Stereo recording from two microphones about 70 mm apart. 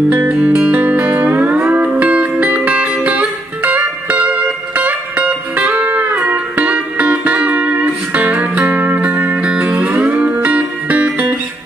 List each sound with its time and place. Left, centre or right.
0.3 s music: centre